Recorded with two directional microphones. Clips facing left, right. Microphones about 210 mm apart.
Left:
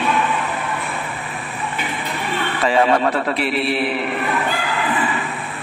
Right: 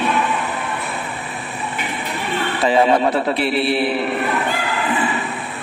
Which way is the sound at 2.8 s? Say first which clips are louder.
Right 1 dB; 5° right (ahead or behind).